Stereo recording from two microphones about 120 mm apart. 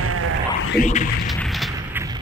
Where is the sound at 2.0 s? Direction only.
15° right (ahead or behind).